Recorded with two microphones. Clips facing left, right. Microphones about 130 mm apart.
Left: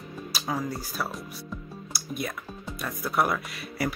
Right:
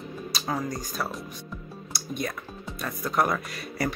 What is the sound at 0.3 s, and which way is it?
Speech, 5° left (ahead or behind).